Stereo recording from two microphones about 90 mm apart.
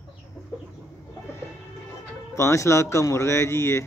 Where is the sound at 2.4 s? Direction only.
35° left (ahead or behind).